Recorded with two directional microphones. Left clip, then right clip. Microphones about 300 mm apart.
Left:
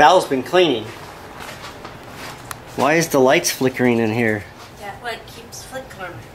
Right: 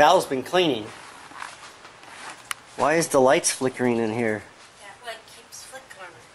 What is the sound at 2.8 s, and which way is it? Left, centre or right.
Speech, centre.